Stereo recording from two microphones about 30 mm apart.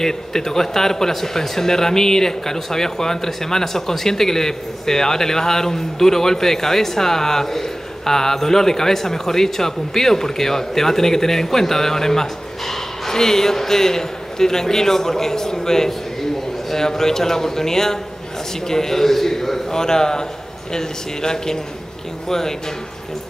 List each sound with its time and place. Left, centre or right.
0.0 s speech: centre